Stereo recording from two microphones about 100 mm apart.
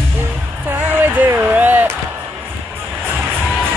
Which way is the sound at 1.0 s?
20° right (ahead or behind).